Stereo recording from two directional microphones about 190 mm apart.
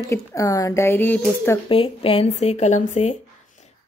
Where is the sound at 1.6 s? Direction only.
30° left (ahead or behind).